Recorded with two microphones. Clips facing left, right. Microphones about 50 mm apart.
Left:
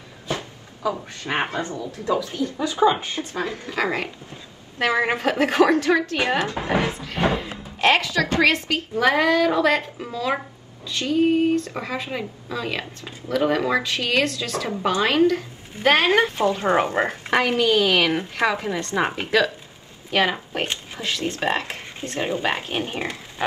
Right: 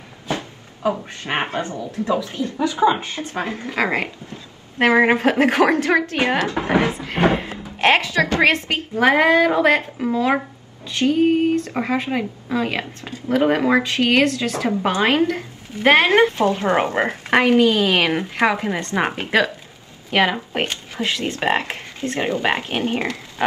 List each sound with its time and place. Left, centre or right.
0.3 s a woman's voice: right